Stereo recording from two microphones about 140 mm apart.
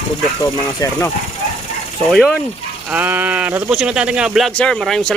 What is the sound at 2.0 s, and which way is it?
Speech, centre (ahead or behind).